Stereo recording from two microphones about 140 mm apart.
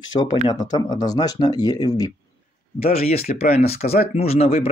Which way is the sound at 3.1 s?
90° left.